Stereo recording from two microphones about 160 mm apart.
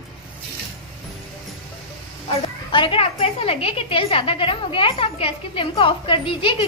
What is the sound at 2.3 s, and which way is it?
A woman's voice, 30° left (ahead or behind).